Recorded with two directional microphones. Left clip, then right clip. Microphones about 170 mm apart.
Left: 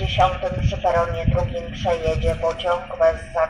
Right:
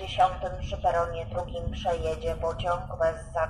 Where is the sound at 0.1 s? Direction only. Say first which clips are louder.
Left 5 dB; 15° right (ahead or behind).